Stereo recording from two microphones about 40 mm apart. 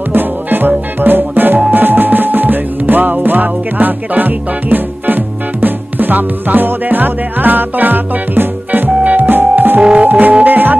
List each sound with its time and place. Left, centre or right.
0.1 s music: right
9.8 s music: right
10.0 s music: right